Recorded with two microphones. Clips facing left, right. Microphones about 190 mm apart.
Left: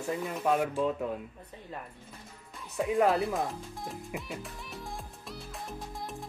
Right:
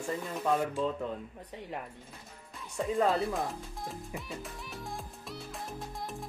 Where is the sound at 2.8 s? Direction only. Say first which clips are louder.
Left 3 dB; 15° left (ahead or behind).